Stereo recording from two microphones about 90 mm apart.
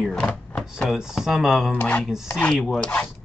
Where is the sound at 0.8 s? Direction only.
5° right (ahead or behind).